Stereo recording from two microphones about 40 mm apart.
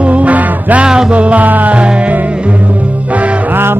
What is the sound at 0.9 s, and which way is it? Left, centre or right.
Music, centre.